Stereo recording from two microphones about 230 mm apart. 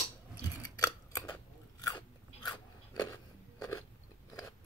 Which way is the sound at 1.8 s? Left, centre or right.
Centre.